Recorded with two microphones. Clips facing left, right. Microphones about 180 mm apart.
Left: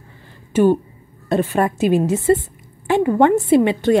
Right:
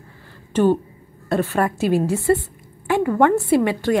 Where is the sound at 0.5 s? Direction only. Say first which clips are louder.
Left 2 dB; 10° left (ahead or behind).